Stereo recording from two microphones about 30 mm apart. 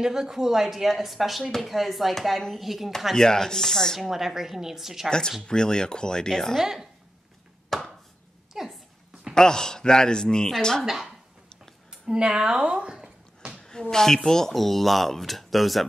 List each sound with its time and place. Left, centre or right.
0.0 s speech: centre
3.2 s speech: centre
4.0 s speech: centre
5.5 s speech: left
6.6 s speech: centre
7.7 s chopping: centre
8.5 s a sound: centre
9.3 s speech: left
10.8 s speech: centre
12.1 s speech: right
13.6 s speech: left; by 15.9 s centre